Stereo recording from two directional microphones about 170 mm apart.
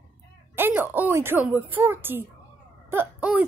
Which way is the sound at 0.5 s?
10° right (ahead or behind).